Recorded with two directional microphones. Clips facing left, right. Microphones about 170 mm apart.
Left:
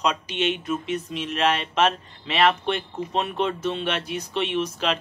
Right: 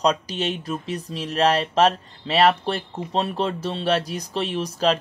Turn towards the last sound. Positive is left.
turn(degrees=-35)  # may be behind; listen again after turning